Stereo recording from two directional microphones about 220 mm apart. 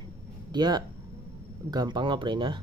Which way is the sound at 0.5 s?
20° right (ahead or behind).